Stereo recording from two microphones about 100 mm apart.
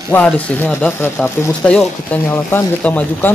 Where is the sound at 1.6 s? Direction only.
5° left (ahead or behind).